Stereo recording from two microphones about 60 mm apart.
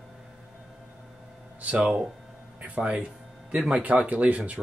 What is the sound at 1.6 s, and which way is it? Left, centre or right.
Speech, right.